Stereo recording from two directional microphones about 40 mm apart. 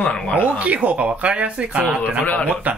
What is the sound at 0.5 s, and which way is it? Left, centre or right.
Speech, right.